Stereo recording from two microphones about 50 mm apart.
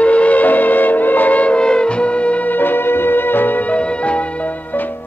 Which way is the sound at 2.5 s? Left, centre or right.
Left.